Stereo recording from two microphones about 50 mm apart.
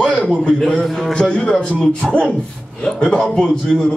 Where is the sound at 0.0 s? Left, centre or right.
Left.